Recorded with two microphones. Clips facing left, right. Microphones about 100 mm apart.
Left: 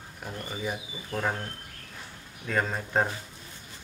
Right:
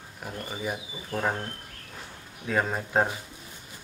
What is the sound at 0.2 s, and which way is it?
Speech, 5° right (ahead or behind).